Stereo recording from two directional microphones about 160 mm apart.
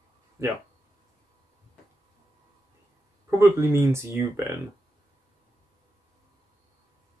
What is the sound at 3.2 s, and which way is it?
Speech, 15° right (ahead or behind).